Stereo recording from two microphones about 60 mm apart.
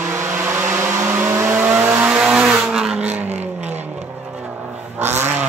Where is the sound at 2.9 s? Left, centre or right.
Right.